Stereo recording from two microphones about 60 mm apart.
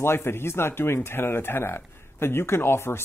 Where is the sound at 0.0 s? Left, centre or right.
Left.